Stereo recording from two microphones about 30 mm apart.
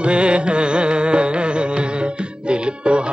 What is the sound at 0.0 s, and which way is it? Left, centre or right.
Carnatic music, right.